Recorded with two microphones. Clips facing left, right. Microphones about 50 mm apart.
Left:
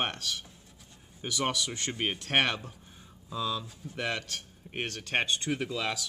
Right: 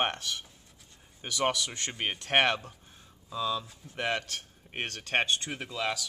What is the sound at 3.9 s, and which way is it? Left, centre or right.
Speech, centre.